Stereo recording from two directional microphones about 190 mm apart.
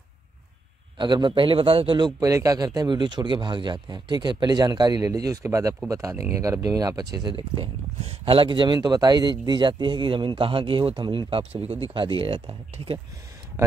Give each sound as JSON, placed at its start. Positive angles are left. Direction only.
{"t": 0.9, "sound": "a man's voice", "side_deg": -25}
{"t": 7.5, "sound": "a man's voice", "side_deg": -30}